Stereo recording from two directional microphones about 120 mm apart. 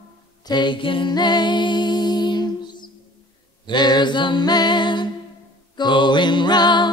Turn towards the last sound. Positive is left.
turn(degrees=40)  # may be behind; listen again after turning